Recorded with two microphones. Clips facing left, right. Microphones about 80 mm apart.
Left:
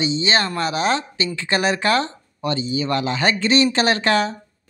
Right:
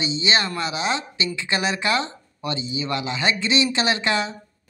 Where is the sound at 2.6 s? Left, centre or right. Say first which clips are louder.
Left 5 dB; right.